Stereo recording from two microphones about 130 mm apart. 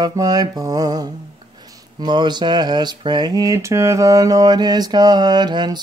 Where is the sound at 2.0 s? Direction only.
35° right (ahead or behind).